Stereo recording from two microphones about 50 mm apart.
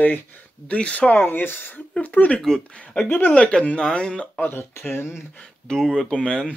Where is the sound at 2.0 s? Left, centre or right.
Left.